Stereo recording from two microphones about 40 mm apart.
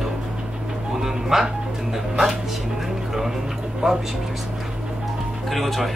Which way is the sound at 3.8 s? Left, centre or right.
Centre.